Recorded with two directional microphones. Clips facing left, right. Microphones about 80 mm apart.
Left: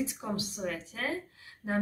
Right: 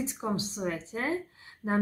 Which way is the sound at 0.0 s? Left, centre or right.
Right.